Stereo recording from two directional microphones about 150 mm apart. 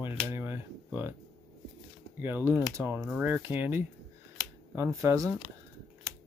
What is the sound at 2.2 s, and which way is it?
Speech, 15° right (ahead or behind).